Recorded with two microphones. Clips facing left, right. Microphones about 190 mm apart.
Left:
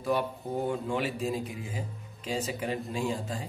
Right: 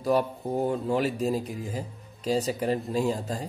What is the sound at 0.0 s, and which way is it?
Speech, 35° right (ahead or behind).